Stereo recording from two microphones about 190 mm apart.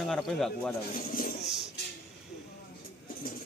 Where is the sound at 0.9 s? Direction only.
45° left (ahead or behind).